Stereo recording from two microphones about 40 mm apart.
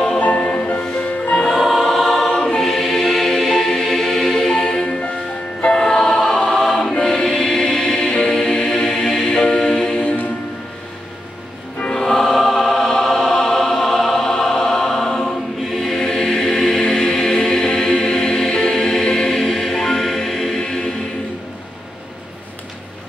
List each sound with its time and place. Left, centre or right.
0.2 s music: left
1.1 s choir: left
1.5 s choir: centre
2.6 s choir: centre
4.5 s music: centre
6.5 s choir: centre
10.0 s music: left
11.9 s choir: centre